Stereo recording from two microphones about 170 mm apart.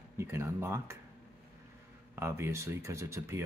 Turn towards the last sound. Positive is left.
turn(degrees=-15)  # may be behind; listen again after turning